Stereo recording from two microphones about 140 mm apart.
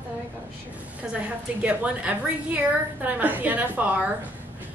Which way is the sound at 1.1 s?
10° right (ahead or behind).